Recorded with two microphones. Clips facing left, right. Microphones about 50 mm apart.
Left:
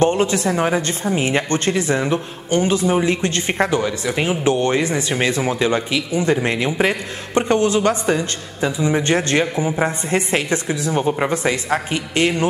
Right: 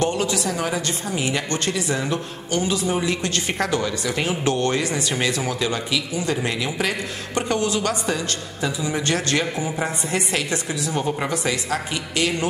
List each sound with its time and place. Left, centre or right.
0.0 s speech: left